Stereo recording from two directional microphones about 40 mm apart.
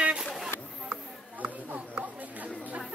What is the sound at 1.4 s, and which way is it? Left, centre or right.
Chatter, right.